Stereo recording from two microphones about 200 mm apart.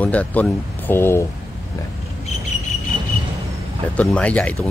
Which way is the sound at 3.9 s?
5° left (ahead or behind).